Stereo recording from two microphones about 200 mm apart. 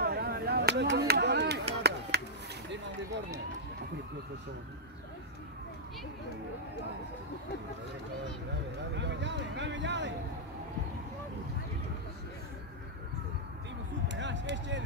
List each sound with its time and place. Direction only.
0.0 s a sound: 50° right (ahead or behind)
8.9 s speech: 65° right (ahead or behind)
14.0 s speech: 60° right (ahead or behind)